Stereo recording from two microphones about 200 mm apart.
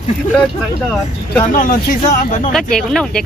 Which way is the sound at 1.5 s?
40° left (ahead or behind).